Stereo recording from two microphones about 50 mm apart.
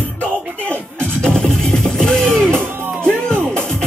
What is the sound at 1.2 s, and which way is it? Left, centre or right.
Music, centre.